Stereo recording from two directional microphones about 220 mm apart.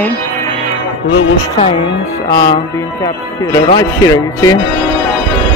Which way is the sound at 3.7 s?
15° left (ahead or behind).